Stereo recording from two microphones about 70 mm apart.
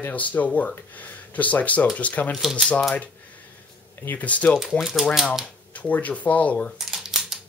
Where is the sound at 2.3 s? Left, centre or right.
Centre.